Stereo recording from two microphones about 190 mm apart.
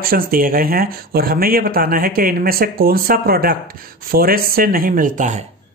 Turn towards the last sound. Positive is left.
turn(degrees=-40)  # may be behind; listen again after turning